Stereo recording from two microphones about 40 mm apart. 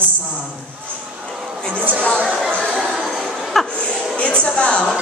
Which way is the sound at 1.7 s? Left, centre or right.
Right.